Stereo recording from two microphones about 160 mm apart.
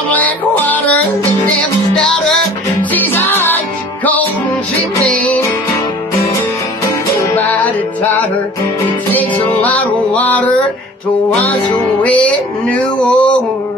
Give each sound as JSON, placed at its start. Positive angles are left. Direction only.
{"t": 0.1, "sound": "music", "side_deg": 10}
{"t": 7.3, "sound": "music", "side_deg": 10}
{"t": 9.6, "sound": "music", "side_deg": 10}
{"t": 12.0, "sound": "speech", "side_deg": 10}